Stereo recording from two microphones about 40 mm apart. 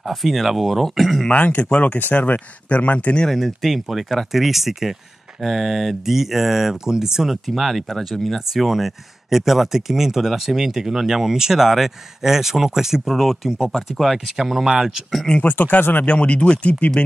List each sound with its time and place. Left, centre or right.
0.1 s speech: centre
1.3 s speech: left
2.0 s speech: left
3.3 s speech: centre
7.4 s speech: centre
14.4 s speech: centre
15.4 s speech: left
16.1 s speech: left